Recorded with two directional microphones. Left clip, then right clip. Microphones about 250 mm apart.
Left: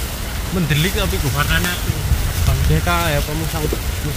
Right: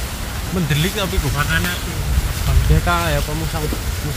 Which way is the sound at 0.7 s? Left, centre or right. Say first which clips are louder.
Left 1 dB; centre.